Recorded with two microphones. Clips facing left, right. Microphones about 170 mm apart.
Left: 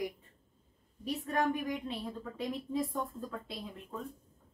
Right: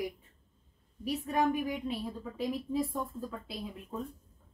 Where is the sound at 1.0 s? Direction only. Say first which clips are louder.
Right 2 dB; 15° right (ahead or behind).